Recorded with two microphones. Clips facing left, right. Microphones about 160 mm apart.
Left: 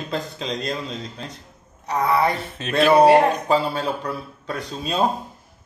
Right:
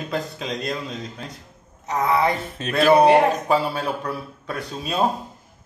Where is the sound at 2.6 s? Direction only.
40° right (ahead or behind).